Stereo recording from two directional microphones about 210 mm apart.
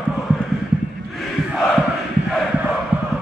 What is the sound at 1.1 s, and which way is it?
Crowd, centre (ahead or behind).